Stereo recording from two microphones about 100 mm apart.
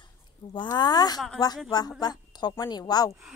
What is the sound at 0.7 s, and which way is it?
A woman's voice, 45° left (ahead or behind).